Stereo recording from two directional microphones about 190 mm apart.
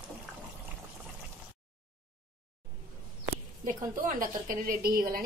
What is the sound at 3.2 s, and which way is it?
A woman's voice, 45° right (ahead or behind).